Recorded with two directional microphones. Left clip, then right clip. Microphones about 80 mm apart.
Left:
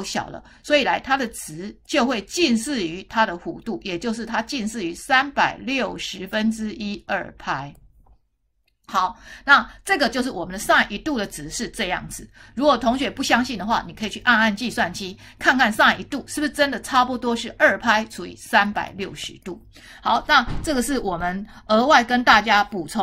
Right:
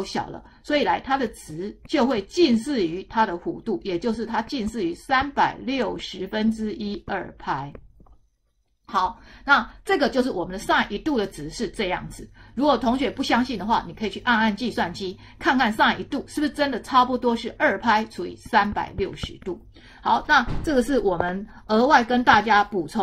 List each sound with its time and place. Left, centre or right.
0.0 s a woman's voice: left
8.9 s a woman's voice: left